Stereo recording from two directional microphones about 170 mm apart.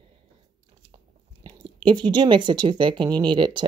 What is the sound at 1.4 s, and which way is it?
Speech, 30° right (ahead or behind).